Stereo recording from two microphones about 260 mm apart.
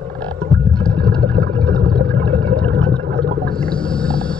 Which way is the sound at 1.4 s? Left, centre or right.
Right.